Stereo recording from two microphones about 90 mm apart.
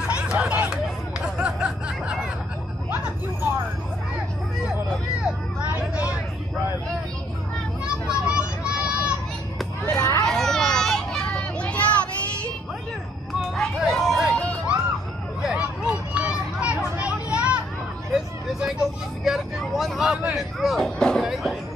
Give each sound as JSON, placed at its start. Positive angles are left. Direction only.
{"t": 0.0, "sound": "chatter", "side_deg": -10}
{"t": 1.4, "sound": "snicker", "side_deg": -10}
{"t": 5.2, "sound": "vehicle", "side_deg": -15}
{"t": 7.8, "sound": "a sound", "side_deg": -10}
{"t": 9.8, "sound": "children playing", "side_deg": 30}
{"t": 10.2, "sound": "children playing", "side_deg": 5}
{"t": 13.6, "sound": "a sound", "side_deg": 5}
{"t": 15.5, "sound": "a sound", "side_deg": -10}
{"t": 18.1, "sound": "vehicle", "side_deg": -5}
{"t": 21.3, "sound": "music", "side_deg": 0}